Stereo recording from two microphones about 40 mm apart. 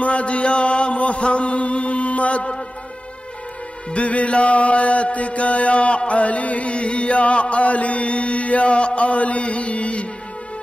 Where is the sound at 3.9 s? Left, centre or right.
Left.